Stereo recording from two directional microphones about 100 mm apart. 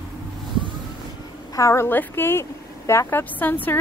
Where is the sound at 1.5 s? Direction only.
35° left (ahead or behind).